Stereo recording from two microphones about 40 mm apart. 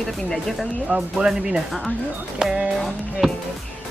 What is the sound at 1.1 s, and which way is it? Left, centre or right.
Speech, centre.